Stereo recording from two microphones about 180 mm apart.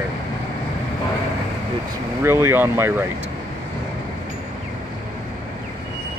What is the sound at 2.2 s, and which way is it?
Speech, 15° right (ahead or behind).